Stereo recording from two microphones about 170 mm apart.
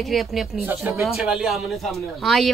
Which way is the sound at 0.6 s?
15° right (ahead or behind).